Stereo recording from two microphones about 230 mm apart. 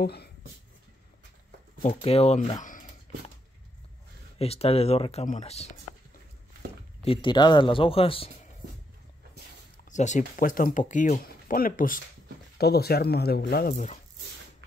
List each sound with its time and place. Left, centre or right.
0.0 s speech: left
1.8 s speech: left
2.6 s a sound: left
4.4 s speech: left
7.1 s speech: left
9.8 s speech: left